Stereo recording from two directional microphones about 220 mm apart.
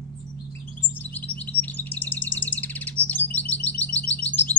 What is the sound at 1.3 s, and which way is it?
Bird, 5° left (ahead or behind).